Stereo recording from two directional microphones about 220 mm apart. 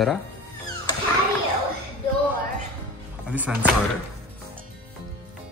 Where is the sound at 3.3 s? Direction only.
5° right (ahead or behind).